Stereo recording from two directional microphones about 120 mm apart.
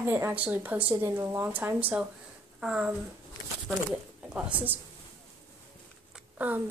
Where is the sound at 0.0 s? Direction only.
15° right (ahead or behind).